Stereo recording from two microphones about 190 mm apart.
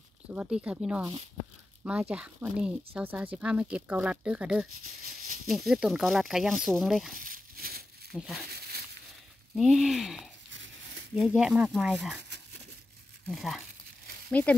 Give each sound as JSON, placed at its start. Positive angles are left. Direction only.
{"t": 0.3, "sound": "speech", "side_deg": -5}
{"t": 7.2, "sound": "crumpling", "side_deg": -45}
{"t": 8.1, "sound": "speech", "side_deg": 0}
{"t": 9.6, "sound": "speech", "side_deg": 0}
{"t": 10.5, "sound": "a sound", "side_deg": -75}
{"t": 11.1, "sound": "speech", "side_deg": 0}
{"t": 13.3, "sound": "speech", "side_deg": 0}